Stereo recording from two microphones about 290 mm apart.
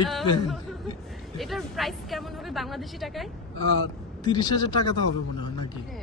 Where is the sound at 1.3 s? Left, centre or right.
Centre.